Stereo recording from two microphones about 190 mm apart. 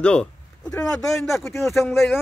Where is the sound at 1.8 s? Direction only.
Centre (ahead or behind).